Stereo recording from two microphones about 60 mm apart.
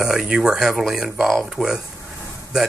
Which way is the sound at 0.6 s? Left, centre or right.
Centre.